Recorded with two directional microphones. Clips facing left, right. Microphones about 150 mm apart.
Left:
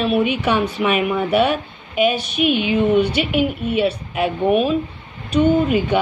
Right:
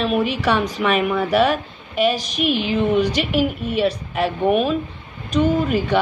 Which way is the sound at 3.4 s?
5° left (ahead or behind).